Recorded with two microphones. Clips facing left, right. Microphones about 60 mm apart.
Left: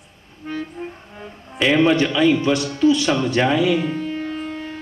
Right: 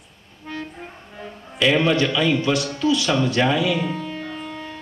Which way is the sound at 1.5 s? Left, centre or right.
Left.